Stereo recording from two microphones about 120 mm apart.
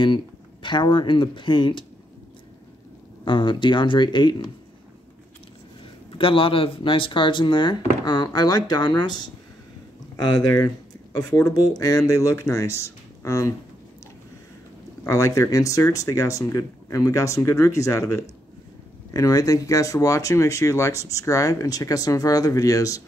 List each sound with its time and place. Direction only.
0.0 s speech: 45° left (ahead or behind)
3.3 s speech: 40° left (ahead or behind)
6.1 s speech: 45° left (ahead or behind)
11.1 s speech: 30° left (ahead or behind)
15.0 s speech: 25° left (ahead or behind)